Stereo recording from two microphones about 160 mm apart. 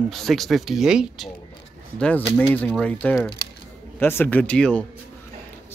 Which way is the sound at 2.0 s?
10° left (ahead or behind).